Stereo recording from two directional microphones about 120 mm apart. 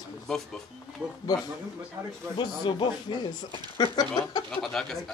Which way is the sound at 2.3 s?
40° left (ahead or behind).